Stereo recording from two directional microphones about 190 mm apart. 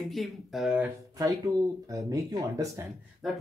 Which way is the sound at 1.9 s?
20° right (ahead or behind).